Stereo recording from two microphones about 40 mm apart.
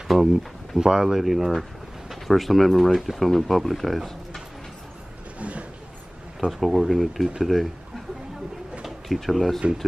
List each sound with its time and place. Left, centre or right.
0.1 s speech: centre
5.4 s a sound: right
6.6 s speech: centre
8.8 s speech: centre